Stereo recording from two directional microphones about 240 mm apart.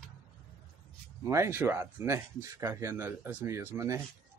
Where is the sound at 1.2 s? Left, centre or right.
Centre.